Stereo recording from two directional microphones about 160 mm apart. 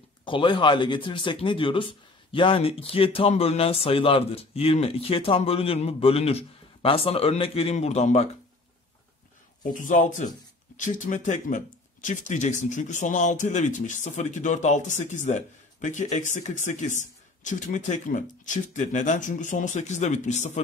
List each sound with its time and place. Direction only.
0.2 s speech: 30° left (ahead or behind)
9.6 s speech: 55° left (ahead or behind)